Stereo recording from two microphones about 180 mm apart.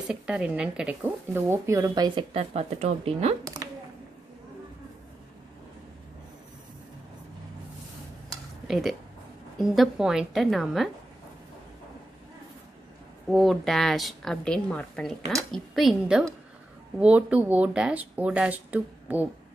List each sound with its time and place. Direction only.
0.1 s speech: 5° right (ahead or behind); by 3.3 s 35° right (ahead or behind)
8.6 s a woman's voice: centre (ahead or behind)
13.3 s a woman's voice: centre (ahead or behind)